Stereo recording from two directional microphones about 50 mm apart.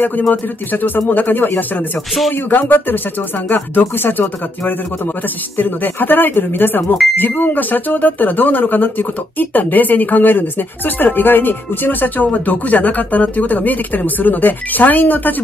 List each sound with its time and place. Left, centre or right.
0.3 s speech: left